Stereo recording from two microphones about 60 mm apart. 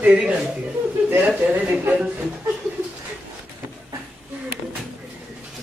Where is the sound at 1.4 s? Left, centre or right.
Right.